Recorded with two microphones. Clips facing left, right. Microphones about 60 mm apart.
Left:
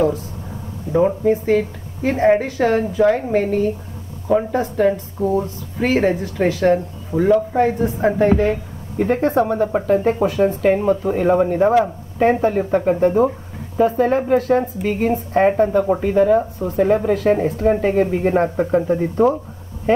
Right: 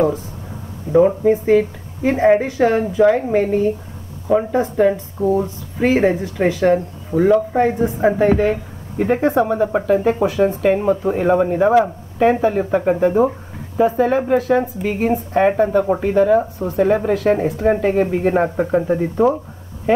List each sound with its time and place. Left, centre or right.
0.9 s speech: centre
15.1 s speech: centre
15.8 s speech: centre
16.2 s speech: centre